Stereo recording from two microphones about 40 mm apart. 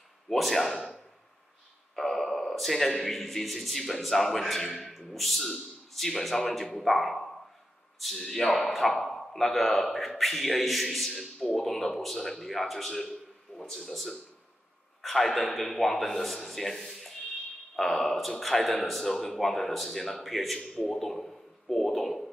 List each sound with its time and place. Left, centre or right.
0.3 s a man's voice: centre
2.0 s a man's voice: centre
11.3 s a man's voice: centre